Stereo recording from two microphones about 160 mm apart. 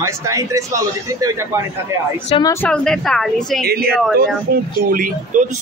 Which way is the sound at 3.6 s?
75° right (ahead or behind).